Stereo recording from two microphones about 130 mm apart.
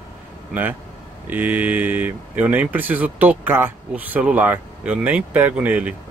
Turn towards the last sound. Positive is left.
turn(degrees=-10)  # may be behind; listen again after turning